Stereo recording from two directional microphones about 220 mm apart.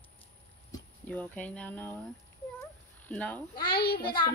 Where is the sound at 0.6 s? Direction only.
10° left (ahead or behind).